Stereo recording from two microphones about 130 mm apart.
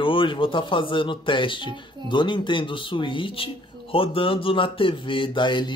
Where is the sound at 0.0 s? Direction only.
40° left (ahead or behind).